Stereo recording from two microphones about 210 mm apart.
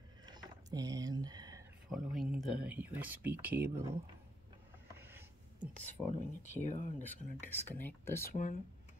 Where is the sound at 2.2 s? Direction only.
5° right (ahead or behind).